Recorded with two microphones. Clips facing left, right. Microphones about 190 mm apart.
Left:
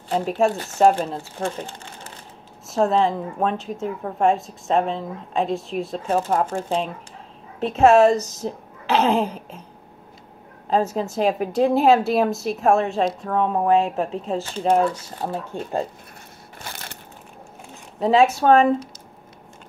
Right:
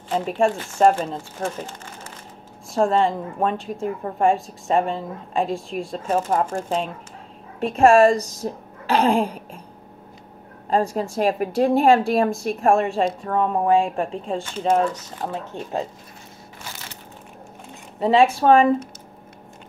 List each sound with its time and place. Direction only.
0.2 s a woman's voice: 5° left (ahead or behind)
2.7 s a woman's voice: centre (ahead or behind)
8.1 s speech: 10° right (ahead or behind)
9.2 s a sound: 10° right (ahead or behind)
10.7 s a woman's voice: 5° left (ahead or behind)
16.7 s crushing: 55° left (ahead or behind)
17.9 s a woman's voice: centre (ahead or behind)